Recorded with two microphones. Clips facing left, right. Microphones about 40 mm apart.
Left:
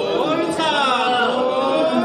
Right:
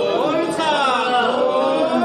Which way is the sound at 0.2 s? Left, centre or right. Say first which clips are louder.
Even; left.